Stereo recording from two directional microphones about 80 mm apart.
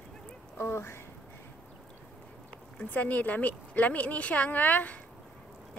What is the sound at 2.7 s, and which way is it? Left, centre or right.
A woman's voice, left.